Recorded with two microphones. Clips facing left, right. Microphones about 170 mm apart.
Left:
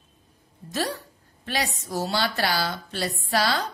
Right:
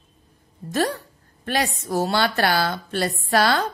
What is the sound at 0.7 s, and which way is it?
A woman's voice, 50° right (ahead or behind).